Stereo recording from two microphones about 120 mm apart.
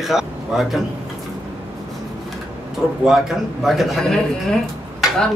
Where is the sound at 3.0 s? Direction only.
5° right (ahead or behind).